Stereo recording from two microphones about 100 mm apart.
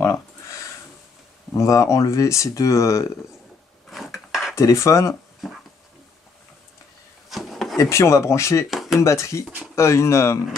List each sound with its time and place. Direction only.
0.0 s a sound: 30° left (ahead or behind)
1.5 s speech: 30° left (ahead or behind)
3.9 s a sound: centre (ahead or behind)
4.6 s speech: 30° left (ahead or behind)
7.2 s drawer open or close: centre (ahead or behind)
7.7 s speech: 30° left (ahead or behind)
8.6 s speech: centre (ahead or behind)
9.0 s speech: 30° left (ahead or behind)